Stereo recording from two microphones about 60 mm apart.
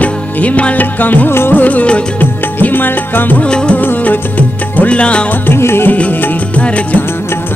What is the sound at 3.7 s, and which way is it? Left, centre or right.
Music, left.